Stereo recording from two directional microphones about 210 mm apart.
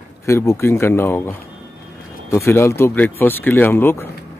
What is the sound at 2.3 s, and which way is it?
Speech, 10° left (ahead or behind).